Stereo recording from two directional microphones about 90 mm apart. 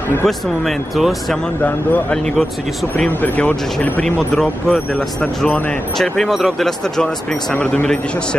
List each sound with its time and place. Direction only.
0.2 s speech: centre (ahead or behind)
1.6 s a man's voice: 20° left (ahead or behind)
3.2 s speech: 20° left (ahead or behind)
4.0 s a man's voice: 5° left (ahead or behind)
7.5 s a man's voice: 15° left (ahead or behind)